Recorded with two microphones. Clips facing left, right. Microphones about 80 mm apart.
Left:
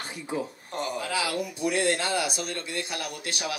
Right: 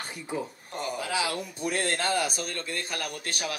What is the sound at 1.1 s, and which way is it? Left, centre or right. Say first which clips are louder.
Speech: left 1 dB; right.